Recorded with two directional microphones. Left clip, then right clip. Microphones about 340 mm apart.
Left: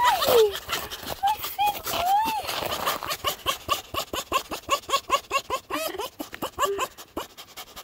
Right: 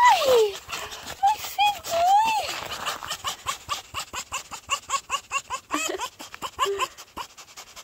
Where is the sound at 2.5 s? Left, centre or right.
Left.